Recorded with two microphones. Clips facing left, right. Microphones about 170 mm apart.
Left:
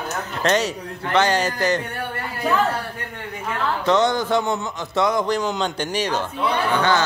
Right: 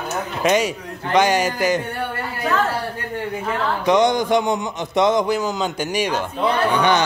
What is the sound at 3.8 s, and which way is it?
A man's voice, 15° right (ahead or behind).